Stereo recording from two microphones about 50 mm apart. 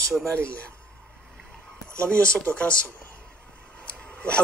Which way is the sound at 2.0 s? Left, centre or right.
Left.